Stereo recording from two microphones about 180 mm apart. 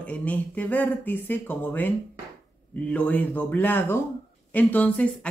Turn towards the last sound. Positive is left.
turn(degrees=5)  # may be behind; listen again after turning